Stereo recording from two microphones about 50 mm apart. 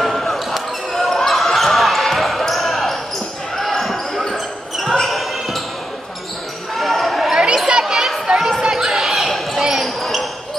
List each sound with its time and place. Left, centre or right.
0.0 s basketball bounce: centre
6.8 s basketball bounce: centre
7.3 s chatter: centre
7.8 s chatter: centre
8.4 s basketball bounce: centre
9.8 s basketball bounce: centre